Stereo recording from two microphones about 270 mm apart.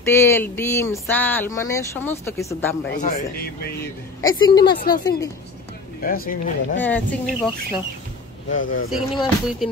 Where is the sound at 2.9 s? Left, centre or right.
Left.